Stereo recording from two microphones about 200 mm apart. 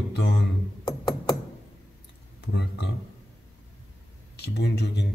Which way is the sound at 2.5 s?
55° left (ahead or behind).